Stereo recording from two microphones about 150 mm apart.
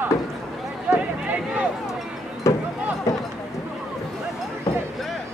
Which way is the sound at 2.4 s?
20° left (ahead or behind).